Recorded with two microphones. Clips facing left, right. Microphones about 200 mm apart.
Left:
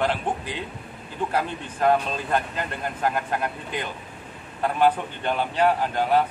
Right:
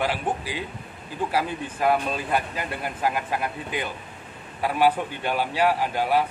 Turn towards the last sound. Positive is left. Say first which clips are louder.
# left 1 dB
turn(degrees=-10)  # may be behind; listen again after turning